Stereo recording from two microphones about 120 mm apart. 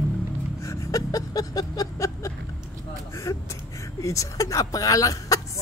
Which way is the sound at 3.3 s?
25° left (ahead or behind).